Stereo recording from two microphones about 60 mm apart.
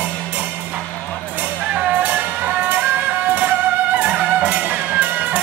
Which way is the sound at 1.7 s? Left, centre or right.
Right.